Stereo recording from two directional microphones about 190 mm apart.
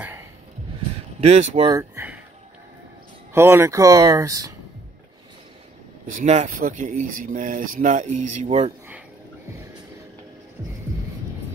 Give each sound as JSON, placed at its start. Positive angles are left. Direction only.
{"t": 0.0, "sound": "a sound", "side_deg": -10}
{"t": 1.2, "sound": "speech", "side_deg": -35}
{"t": 1.7, "sound": "speech", "side_deg": -15}
{"t": 3.3, "sound": "speech", "side_deg": -15}
{"t": 6.0, "sound": "speech", "side_deg": -40}